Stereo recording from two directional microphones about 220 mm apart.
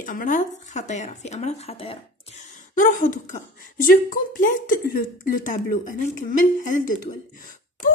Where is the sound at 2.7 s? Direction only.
35° left (ahead or behind).